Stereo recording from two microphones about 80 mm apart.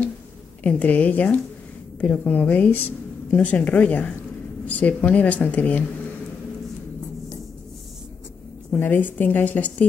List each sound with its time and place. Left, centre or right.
0.7 s speech: centre
8.7 s speech: left